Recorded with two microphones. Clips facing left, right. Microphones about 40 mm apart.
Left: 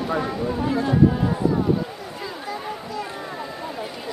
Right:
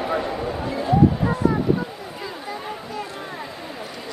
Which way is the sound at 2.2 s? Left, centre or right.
Centre.